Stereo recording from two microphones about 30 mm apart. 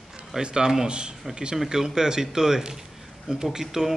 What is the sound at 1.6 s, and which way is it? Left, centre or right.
Speech, centre.